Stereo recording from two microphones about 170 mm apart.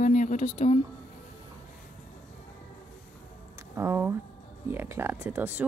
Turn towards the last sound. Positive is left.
turn(degrees=-10)  # may be behind; listen again after turning